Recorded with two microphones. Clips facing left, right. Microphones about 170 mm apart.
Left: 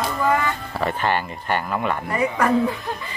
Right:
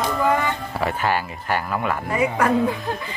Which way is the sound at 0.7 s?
5° right (ahead or behind).